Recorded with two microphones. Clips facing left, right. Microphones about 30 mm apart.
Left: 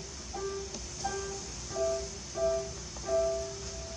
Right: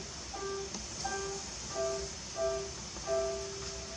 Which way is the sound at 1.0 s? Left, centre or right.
Centre.